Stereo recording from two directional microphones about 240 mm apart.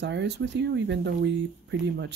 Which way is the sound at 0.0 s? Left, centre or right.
Right.